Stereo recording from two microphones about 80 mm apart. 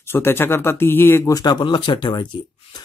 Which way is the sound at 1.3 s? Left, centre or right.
Left.